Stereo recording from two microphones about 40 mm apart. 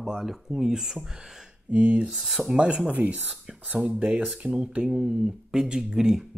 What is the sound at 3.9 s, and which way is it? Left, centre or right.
Speech, right.